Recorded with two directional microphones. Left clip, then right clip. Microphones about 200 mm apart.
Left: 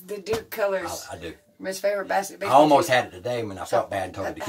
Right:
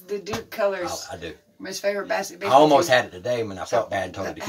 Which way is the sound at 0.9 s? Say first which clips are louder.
Right 2 dB; 5° right (ahead or behind).